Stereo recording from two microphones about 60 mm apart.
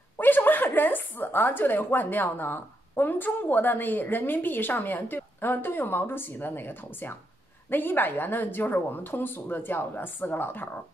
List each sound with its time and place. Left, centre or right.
0.2 s speech: left